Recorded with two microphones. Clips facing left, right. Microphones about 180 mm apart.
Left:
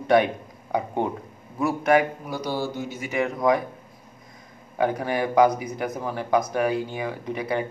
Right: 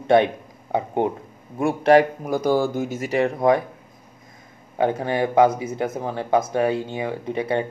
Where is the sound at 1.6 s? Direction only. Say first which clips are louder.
Right 5 dB; 30° right (ahead or behind).